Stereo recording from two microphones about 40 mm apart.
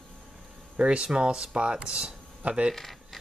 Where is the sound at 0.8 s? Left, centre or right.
Right.